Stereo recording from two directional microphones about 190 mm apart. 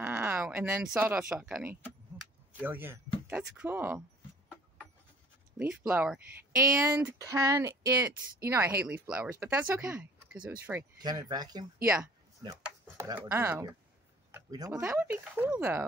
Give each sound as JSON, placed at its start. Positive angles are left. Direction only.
{"t": 0.0, "sound": "a sound", "side_deg": -10}
{"t": 1.0, "sound": "speech", "side_deg": -5}
{"t": 5.6, "sound": "speech", "side_deg": -5}
{"t": 12.9, "sound": "speech", "side_deg": -15}
{"t": 14.3, "sound": "a sound", "side_deg": -20}
{"t": 14.7, "sound": "speech", "side_deg": -10}